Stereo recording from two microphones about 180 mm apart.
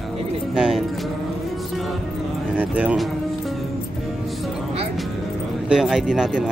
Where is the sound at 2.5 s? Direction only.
5° right (ahead or behind).